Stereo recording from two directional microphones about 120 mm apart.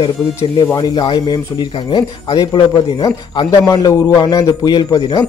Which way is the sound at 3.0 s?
30° left (ahead or behind).